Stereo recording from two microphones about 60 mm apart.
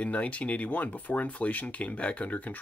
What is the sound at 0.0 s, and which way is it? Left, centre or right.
Speech, left.